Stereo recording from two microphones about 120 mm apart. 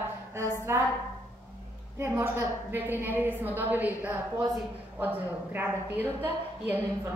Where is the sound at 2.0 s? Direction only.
20° right (ahead or behind).